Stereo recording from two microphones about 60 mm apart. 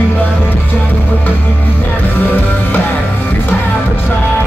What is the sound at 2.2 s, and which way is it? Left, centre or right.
Music, left.